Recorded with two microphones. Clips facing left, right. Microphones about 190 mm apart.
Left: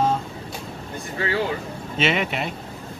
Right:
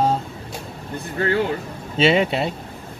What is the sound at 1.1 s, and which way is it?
Speech, 50° right (ahead or behind).